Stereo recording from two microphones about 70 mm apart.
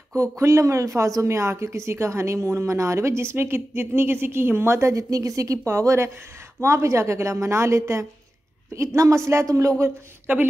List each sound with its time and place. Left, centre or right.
0.2 s speech: right
9.8 s speech: right